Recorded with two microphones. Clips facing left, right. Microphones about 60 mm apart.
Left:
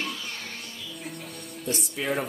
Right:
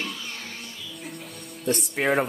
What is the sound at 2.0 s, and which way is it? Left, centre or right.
Speech, right.